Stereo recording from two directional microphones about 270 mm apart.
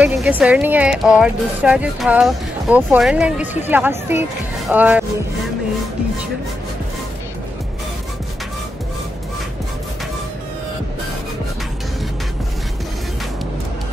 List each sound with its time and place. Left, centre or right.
0.0 s speech: centre